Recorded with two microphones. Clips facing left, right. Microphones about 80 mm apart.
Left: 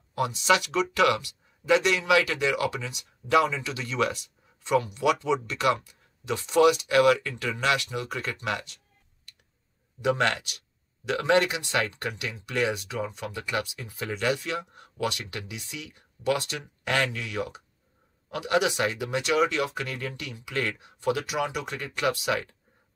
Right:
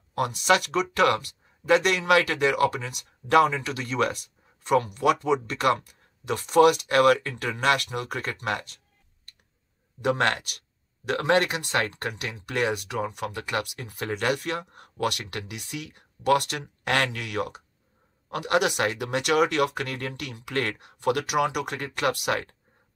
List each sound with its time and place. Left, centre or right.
0.1 s speech: right
10.0 s speech: right